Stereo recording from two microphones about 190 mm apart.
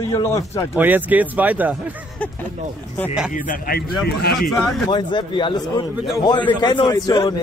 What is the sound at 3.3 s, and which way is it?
Speech, 45° left (ahead or behind).